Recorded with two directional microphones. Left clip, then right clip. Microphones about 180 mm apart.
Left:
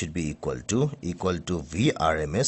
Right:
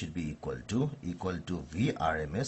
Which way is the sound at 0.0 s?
60° left (ahead or behind).